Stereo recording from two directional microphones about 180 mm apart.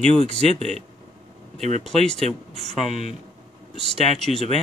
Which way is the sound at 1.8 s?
5° left (ahead or behind).